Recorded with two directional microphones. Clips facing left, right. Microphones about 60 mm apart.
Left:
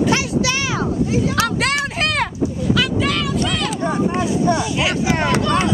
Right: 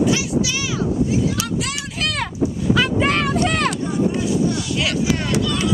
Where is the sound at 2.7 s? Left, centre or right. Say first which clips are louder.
Right 2 dB; right.